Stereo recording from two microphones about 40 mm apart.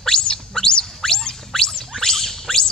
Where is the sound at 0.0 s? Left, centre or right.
Centre.